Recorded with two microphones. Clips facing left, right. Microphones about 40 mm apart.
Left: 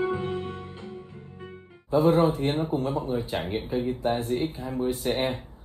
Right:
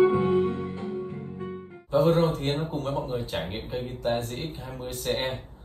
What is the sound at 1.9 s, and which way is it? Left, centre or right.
Music, right.